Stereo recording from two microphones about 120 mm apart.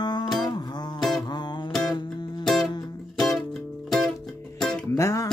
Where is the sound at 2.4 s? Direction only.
5° left (ahead or behind).